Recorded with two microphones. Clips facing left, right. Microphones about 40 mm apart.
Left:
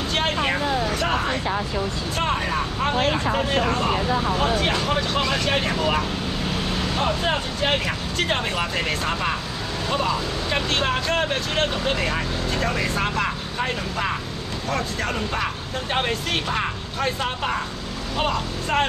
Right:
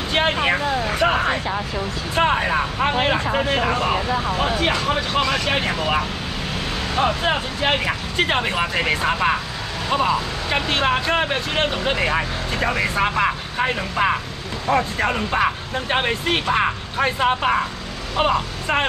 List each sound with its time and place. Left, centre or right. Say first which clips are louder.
0.1 s vehicle: right 5 dB; right
0.8 s speech: right 4 dB; right